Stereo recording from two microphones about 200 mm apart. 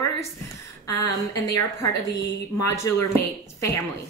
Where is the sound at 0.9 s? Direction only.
15° left (ahead or behind).